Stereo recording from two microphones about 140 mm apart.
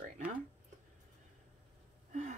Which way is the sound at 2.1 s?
60° right (ahead or behind).